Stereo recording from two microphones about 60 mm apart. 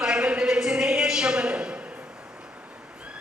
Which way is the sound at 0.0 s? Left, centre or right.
Centre.